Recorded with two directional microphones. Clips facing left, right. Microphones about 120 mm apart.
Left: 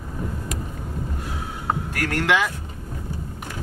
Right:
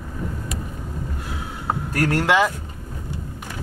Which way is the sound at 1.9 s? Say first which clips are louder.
Right 4 dB; 30° right (ahead or behind).